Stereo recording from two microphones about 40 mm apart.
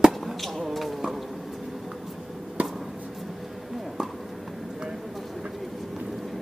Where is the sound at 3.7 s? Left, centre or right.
Centre.